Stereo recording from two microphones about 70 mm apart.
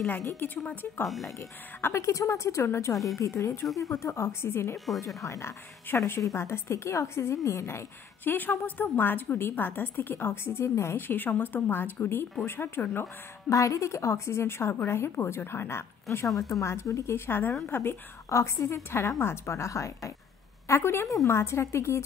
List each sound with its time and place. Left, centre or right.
0.4 s a woman's voice: left
1.0 s speech: centre
1.8 s a woman's voice: left
3.6 s speech: centre
3.9 s a woman's voice: left
4.7 s speech: centre
5.0 s a woman's voice: left
8.2 s a woman's voice: left
13.5 s a woman's voice: left
16.3 s a woman's voice: left
17.3 s a woman's voice: left
18.3 s a woman's voice: left